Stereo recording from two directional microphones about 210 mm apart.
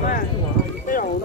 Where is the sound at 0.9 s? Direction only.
40° left (ahead or behind).